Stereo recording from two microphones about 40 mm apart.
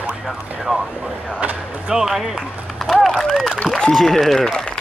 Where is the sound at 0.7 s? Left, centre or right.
Centre.